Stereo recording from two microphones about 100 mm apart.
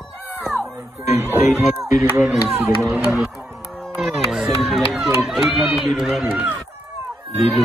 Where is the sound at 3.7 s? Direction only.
Centre (ahead or behind).